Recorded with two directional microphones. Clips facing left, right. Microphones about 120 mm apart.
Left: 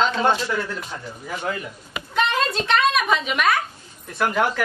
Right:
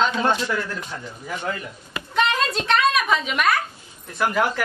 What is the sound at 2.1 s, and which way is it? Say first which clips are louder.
A woman's voice: even; centre (ahead or behind).